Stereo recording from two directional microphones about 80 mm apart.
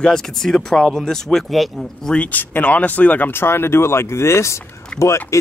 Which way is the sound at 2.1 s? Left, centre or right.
Centre.